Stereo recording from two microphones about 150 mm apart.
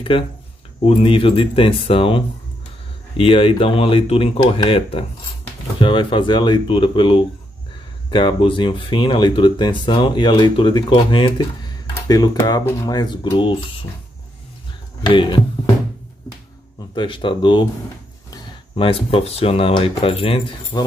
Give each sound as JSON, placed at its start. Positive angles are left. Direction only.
{"t": 0.1, "sound": "speech", "side_deg": 35}
{"t": 15.0, "sound": "speech", "side_deg": 35}
{"t": 16.9, "sound": "speech", "side_deg": 35}
{"t": 18.3, "sound": "a sound", "side_deg": 35}
{"t": 19.0, "sound": "speech", "side_deg": 40}